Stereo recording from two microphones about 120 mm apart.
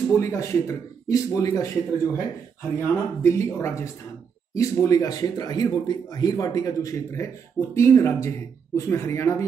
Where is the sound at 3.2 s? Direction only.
25° left (ahead or behind).